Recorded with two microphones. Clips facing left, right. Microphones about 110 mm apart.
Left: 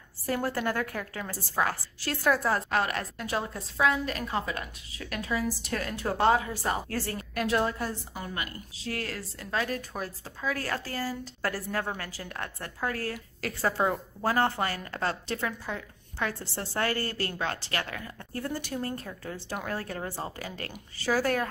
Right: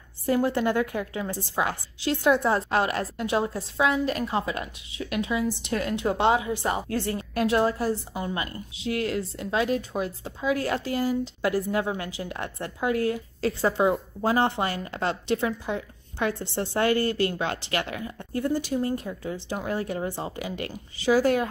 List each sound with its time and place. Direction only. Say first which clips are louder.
0.3 s a woman's voice: right 6 dB; 20° right (ahead or behind)
8.7 s speech: right 7 dB; 35° left (ahead or behind)
9.4 s a woman's voice: right 4 dB; 20° right (ahead or behind)
9.9 s speech: right 7 dB; 10° right (ahead or behind)
10.4 s a woman's voice: right 6 dB; 20° right (ahead or behind)
17.0 s speech: right 8 dB; 40° left (ahead or behind)
17.3 s a woman's voice: right 4 dB; 20° right (ahead or behind)
21.0 s speech: right 6 dB; 45° left (ahead or behind)